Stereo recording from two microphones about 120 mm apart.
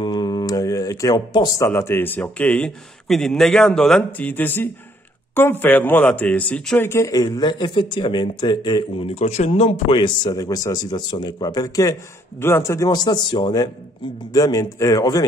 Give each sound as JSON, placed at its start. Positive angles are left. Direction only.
{"t": 0.0, "sound": "a sound", "side_deg": 35}
{"t": 1.7, "sound": "a man's voice", "side_deg": 20}
{"t": 4.3, "sound": "a man's voice", "side_deg": 15}
{"t": 6.8, "sound": "speech", "side_deg": 25}
{"t": 9.0, "sound": "speech", "side_deg": 60}
{"t": 9.9, "sound": "speech", "side_deg": 40}